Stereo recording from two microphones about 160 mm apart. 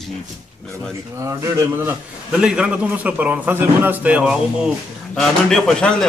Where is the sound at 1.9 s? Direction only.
5° right (ahead or behind).